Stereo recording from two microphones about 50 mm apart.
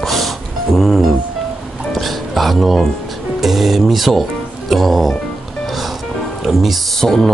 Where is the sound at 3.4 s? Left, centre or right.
Centre.